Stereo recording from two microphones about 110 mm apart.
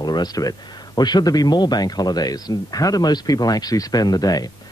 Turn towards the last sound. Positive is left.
turn(degrees=35)  # may be behind; listen again after turning